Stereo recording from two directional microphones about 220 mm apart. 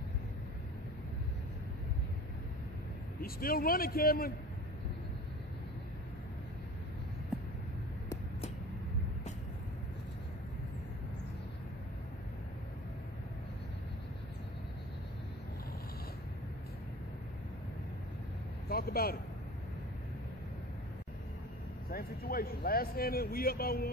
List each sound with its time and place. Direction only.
3.2 s a man's voice: 40° left (ahead or behind)
18.7 s vehicle: 45° left (ahead or behind)
21.9 s a sound: 40° left (ahead or behind)